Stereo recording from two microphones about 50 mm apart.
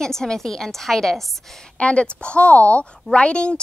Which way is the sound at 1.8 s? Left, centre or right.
Left.